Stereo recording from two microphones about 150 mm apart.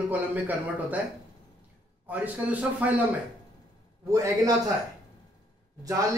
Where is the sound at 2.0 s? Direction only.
10° right (ahead or behind).